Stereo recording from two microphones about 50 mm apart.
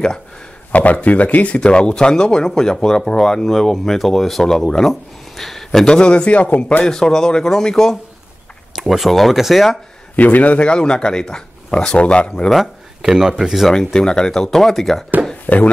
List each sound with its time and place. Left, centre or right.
0.7 s speech: left; by 4.9 s centre
5.3 s a sound: centre
5.9 s speech: centre
6.8 s speech: centre
8.7 s speech: centre
10.1 s speech: left
13.0 s speech: centre
13.7 s speech: centre
15.4 s speech: left